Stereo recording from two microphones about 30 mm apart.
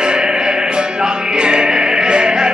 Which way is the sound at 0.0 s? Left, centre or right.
Right.